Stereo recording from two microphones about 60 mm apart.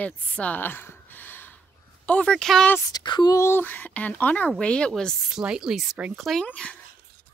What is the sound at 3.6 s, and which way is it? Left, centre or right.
A woman's voice, left.